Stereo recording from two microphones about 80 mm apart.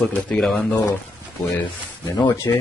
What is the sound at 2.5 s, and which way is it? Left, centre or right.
Speech, left.